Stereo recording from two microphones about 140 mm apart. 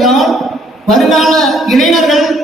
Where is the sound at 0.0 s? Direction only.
Centre (ahead or behind).